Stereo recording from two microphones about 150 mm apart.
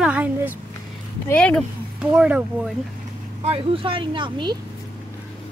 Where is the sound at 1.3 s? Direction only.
10° left (ahead or behind).